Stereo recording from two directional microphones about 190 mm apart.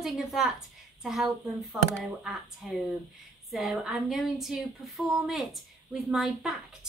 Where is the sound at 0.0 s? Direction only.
Centre (ahead or behind).